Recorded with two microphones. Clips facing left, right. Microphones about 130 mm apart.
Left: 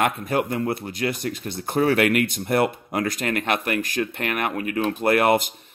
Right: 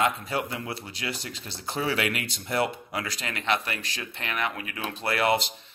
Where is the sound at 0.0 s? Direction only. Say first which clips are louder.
Left 4 dB; 55° left (ahead or behind).